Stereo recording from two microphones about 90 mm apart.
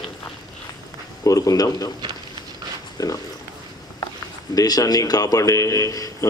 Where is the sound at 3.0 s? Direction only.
45° left (ahead or behind).